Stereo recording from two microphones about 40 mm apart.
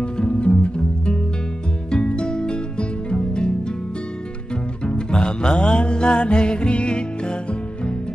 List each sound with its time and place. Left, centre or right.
0.0 s music: left
4.8 s music: left